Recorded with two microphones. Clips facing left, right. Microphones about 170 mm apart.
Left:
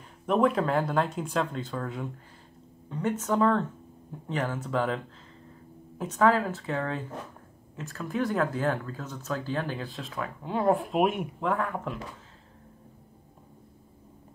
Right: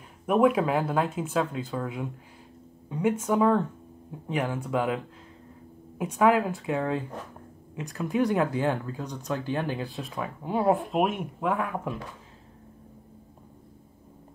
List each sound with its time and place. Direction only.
0.3 s speech: 10° right (ahead or behind)